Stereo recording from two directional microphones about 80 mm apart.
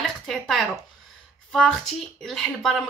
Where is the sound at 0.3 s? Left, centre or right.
Centre.